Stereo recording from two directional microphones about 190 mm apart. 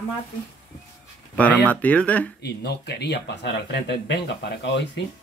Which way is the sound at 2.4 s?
60° left (ahead or behind).